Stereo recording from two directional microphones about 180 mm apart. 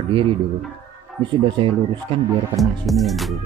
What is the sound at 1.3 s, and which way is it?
Speech, 25° right (ahead or behind).